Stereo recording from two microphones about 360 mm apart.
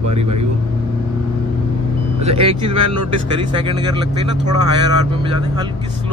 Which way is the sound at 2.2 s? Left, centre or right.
Centre.